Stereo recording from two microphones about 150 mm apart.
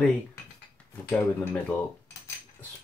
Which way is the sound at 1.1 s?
10° left (ahead or behind).